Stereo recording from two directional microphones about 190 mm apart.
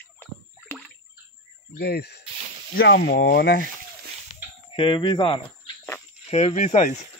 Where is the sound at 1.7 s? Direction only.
60° left (ahead or behind).